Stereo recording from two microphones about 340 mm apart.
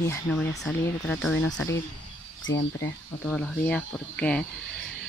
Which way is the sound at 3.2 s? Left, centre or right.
Centre.